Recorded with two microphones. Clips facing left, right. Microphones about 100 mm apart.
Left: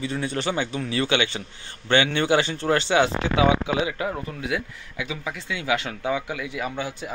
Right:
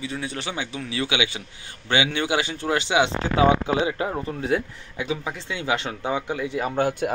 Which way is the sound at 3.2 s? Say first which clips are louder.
Right 1 dB; 35° right (ahead or behind).